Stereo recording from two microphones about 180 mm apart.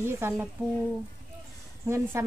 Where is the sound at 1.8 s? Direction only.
15° right (ahead or behind).